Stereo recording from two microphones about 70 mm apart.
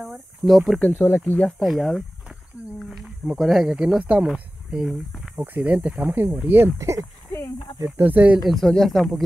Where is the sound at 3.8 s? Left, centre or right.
Centre.